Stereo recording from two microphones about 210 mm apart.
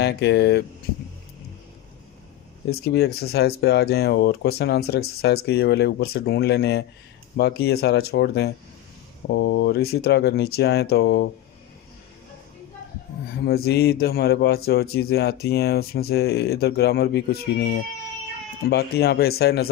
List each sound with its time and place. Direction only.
0.0 s a man's voice: 55° left (ahead or behind)
2.7 s a man's voice: 50° left (ahead or behind)
13.7 s a man's voice: 50° left (ahead or behind)